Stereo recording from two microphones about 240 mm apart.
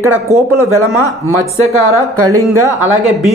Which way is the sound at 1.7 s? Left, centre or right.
Right.